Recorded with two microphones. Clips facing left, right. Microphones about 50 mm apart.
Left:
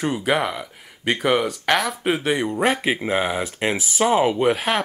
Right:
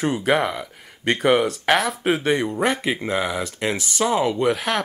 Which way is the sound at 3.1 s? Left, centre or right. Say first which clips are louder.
Left 1 dB; left.